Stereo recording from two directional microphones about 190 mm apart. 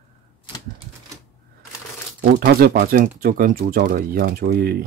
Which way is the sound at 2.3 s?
50° right (ahead or behind).